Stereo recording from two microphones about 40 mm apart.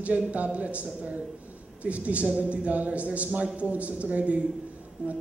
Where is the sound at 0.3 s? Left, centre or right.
Right.